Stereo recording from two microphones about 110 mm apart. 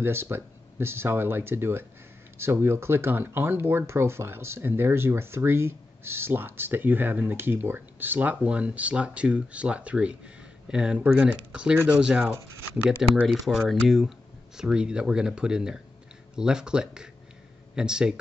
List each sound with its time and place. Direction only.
0.0 s speech: 20° right (ahead or behind)